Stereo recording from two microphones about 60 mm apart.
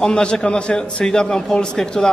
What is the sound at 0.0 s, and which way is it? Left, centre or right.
A man's voice, centre.